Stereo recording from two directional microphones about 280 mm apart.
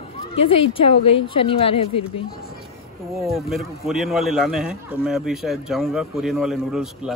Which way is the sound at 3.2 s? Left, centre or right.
Centre.